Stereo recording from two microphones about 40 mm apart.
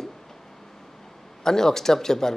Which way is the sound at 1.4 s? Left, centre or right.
Centre.